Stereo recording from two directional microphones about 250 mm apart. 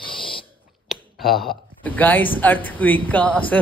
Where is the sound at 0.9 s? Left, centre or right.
Centre.